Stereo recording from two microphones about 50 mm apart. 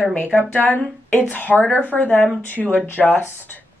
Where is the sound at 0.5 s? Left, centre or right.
Left.